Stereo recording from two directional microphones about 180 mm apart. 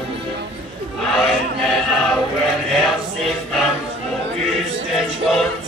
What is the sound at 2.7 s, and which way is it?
Choir, centre (ahead or behind).